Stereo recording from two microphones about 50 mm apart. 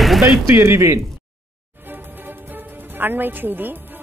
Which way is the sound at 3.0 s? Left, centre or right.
Right.